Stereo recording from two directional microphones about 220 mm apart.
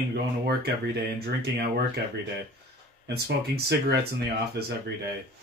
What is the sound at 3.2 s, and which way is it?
Speech, 50° right (ahead or behind).